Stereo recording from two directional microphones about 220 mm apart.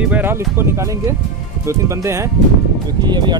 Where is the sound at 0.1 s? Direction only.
10° right (ahead or behind).